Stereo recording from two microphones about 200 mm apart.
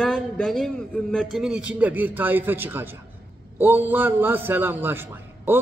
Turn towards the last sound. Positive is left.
turn(degrees=-10)  # may be behind; listen again after turning